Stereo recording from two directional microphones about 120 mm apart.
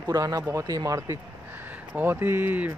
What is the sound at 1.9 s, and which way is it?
Speech, 15° right (ahead or behind).